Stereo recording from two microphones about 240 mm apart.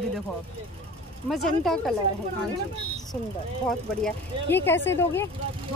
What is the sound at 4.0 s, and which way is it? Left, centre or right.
Speech, centre.